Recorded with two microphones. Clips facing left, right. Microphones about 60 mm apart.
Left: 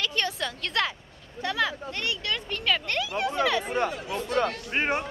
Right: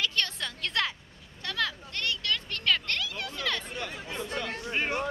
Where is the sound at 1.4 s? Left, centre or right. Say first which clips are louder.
Left 5 dB; centre.